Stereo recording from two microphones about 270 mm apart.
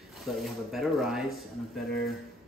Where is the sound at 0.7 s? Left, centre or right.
Centre.